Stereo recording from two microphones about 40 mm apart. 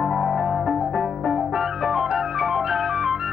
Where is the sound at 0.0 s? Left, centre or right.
Centre.